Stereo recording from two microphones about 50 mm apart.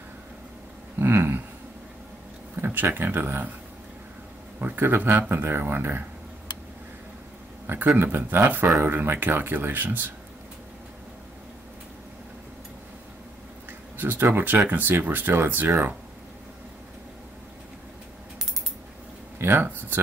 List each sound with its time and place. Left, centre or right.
0.9 s a sound: right
2.5 s speech: right
4.6 s speech: right
7.6 s speech: right
13.7 s a sound: right
14.7 s speech: right
19.3 s speech: right